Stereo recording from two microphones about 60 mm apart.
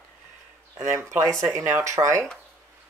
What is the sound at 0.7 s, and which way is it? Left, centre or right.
Speech, right.